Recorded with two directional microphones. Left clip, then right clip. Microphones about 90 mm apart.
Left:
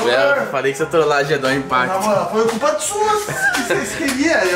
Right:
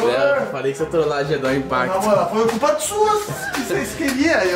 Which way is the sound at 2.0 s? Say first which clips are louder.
Even; 35° right (ahead or behind).